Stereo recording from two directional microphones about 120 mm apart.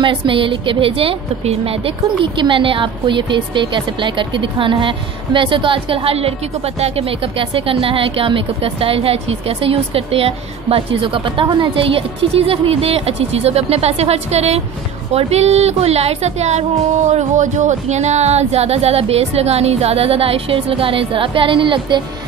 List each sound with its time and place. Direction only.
0.0 s a woman's voice: 45° right (ahead or behind)